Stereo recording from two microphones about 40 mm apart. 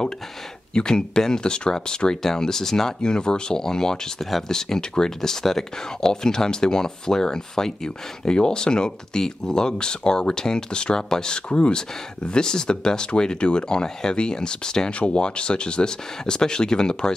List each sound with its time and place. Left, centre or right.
0.7 s speech: centre
14.9 s speech: left